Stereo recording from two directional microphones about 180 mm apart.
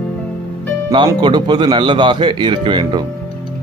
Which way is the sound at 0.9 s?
25° right (ahead or behind).